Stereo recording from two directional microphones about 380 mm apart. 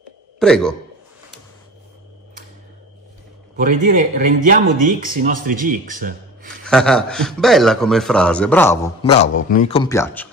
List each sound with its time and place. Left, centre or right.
0.4 s a man's voice: centre
3.6 s speech: right
6.6 s a man's voice: centre